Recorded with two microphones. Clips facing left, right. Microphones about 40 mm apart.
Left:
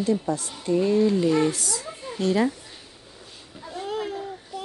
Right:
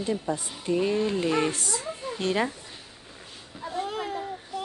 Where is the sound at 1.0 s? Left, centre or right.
Right.